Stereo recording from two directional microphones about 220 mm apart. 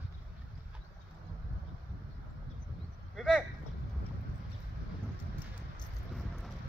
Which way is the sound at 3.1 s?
5° right (ahead or behind).